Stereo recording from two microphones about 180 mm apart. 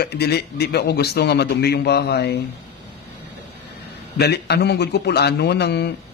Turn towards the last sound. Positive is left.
turn(degrees=65)  # may be behind; listen again after turning